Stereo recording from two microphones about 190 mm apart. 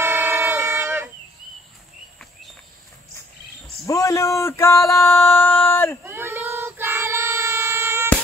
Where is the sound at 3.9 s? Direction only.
15° left (ahead or behind).